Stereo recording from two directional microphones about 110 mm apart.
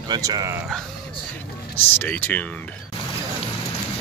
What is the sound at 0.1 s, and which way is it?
Speech, 35° right (ahead or behind).